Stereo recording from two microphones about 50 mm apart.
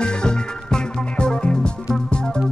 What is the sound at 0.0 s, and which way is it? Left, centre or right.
Music, centre.